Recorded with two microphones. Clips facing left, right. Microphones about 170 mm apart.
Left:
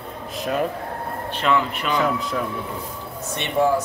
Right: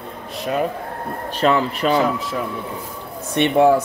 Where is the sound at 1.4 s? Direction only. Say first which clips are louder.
Right 5 dB; 35° right (ahead or behind).